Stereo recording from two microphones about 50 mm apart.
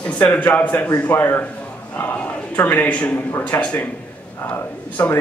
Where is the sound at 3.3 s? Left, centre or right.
Left.